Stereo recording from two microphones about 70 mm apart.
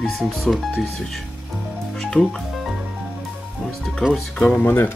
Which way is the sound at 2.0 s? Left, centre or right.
Centre.